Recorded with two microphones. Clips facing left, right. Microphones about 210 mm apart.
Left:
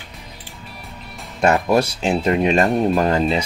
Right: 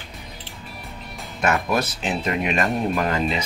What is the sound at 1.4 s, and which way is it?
Speech, 30° left (ahead or behind).